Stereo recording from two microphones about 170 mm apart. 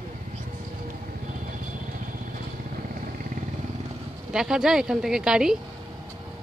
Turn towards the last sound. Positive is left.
turn(degrees=-5)  # may be behind; listen again after turning